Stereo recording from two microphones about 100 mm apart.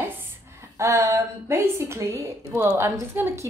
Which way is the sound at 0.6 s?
30° right (ahead or behind).